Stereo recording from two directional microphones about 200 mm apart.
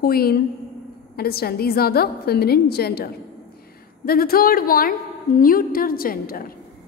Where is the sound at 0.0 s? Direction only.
50° left (ahead or behind).